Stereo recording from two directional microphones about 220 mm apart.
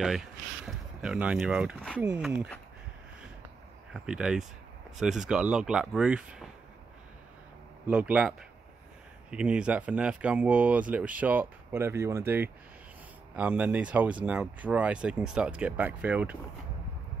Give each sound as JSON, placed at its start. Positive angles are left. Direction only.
{"t": 0.7, "sound": "speech", "side_deg": -5}
{"t": 3.9, "sound": "speech", "side_deg": -5}
{"t": 7.8, "sound": "speech", "side_deg": -5}